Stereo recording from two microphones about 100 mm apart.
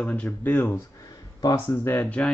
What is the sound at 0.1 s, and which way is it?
Speech, 15° left (ahead or behind).